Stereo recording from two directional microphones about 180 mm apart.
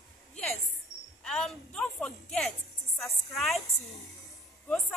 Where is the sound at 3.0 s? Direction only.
Centre (ahead or behind).